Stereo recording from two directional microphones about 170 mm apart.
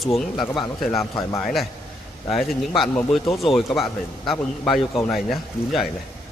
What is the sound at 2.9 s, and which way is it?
Speech, centre (ahead or behind).